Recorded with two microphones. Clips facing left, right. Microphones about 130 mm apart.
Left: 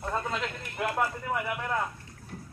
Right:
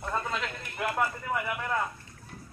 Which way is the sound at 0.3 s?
25° left (ahead or behind).